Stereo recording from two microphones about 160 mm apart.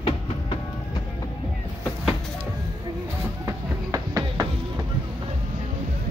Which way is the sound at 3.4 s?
20° right (ahead or behind).